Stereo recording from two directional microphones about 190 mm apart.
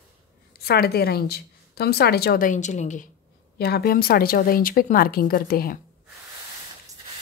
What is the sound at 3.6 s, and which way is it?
A woman's voice, 55° left (ahead or behind).